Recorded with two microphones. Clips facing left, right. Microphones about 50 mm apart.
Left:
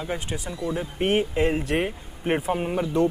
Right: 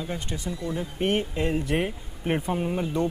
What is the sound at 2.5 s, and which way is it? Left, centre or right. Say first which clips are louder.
Speech: left 2 dB; left.